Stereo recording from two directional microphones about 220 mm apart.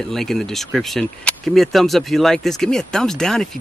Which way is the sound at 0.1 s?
Centre (ahead or behind).